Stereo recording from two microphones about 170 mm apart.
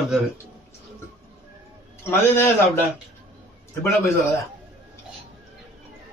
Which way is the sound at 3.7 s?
15° left (ahead or behind).